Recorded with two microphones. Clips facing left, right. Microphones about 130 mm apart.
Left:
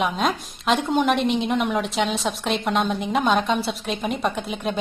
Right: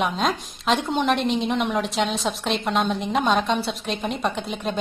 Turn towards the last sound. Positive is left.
turn(degrees=0)  # may be behind; listen again after turning